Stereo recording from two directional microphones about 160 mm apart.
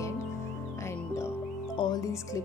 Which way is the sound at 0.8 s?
15° left (ahead or behind).